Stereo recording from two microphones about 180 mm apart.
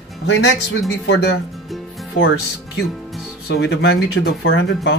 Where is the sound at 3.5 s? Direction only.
65° left (ahead or behind); by 4.7 s 90° left.